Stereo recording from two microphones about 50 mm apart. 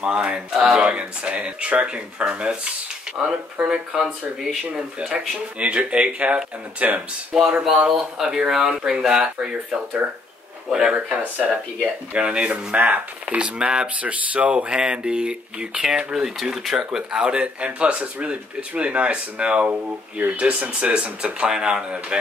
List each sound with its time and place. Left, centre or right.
0.0 s speech: right
0.5 s speech: centre
0.8 s speech: right
3.1 s a sound: centre
3.7 s speech: centre
5.6 s speech: right
7.3 s speech: centre
11.3 s speech: right